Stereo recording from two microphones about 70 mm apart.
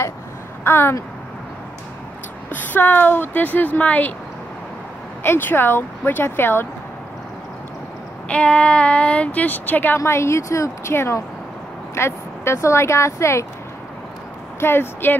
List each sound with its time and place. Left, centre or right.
0.7 s speech: left
2.5 s speech: left
5.2 s speech: left
8.3 s speech: centre
9.9 s speech: left
14.6 s speech: left